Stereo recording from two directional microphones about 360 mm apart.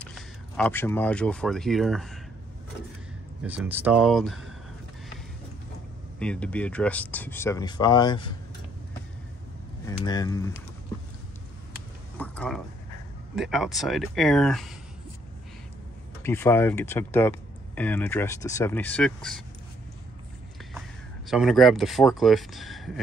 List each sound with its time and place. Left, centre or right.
0.0 s speech: centre
3.4 s speech: centre
6.1 s speech: centre
10.0 s speech: centre
12.2 s a sound: centre
13.4 s speech: centre
16.2 s speech: centre
21.3 s speech: centre